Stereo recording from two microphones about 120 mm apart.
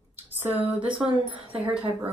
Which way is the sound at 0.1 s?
15° right (ahead or behind).